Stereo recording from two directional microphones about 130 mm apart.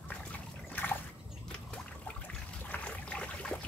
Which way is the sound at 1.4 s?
10° left (ahead or behind).